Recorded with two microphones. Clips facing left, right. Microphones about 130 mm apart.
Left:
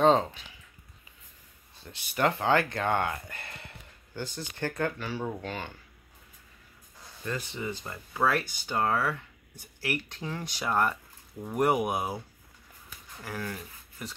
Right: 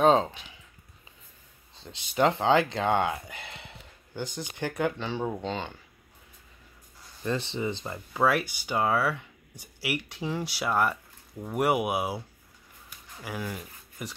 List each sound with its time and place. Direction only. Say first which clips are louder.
0.0 s a sound: right 1 dB; 15° right (ahead or behind)
1.8 s speech: right 3 dB; 20° right (ahead or behind)
7.2 s speech: right 5 dB; 25° right (ahead or behind); by 12.2 s 5° right (ahead or behind)
13.2 s speech: right 1 dB; 10° right (ahead or behind)